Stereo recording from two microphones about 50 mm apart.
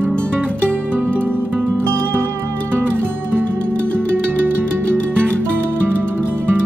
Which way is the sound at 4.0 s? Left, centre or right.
Right.